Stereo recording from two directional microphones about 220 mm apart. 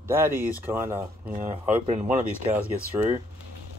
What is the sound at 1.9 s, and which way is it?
Speech, 35° right (ahead or behind).